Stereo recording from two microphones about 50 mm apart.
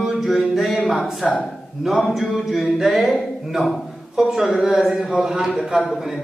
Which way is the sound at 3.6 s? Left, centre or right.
Centre.